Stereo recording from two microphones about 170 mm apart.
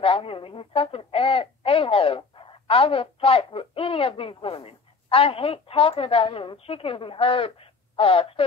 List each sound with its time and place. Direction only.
0.0 s a woman's voice: 35° left (ahead or behind)